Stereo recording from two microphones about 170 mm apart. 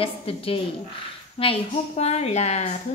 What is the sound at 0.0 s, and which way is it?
A woman's voice, 35° left (ahead or behind).